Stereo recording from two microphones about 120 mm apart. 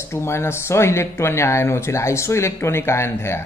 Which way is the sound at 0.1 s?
20° left (ahead or behind).